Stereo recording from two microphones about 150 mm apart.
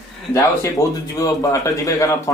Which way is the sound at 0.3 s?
20° left (ahead or behind).